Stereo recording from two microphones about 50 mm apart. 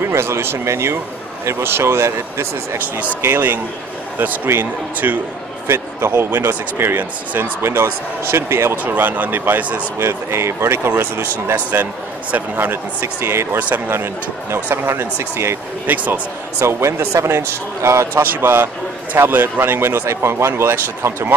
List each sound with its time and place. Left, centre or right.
0.0 s speech: right
3.2 s speech: right
8.8 s speech: right
9.9 s speech: right
11.5 s speech: right
12.5 s speech: right
15.9 s speech: right
16.5 s a man's voice: right
18.2 s speech: right